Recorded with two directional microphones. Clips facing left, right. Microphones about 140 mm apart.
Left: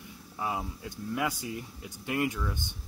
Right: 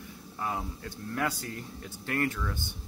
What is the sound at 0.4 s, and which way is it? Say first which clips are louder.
Speech: left 1 dB; 10° left (ahead or behind).